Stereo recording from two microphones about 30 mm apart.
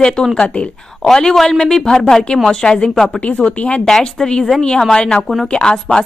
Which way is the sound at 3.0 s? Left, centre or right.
Left.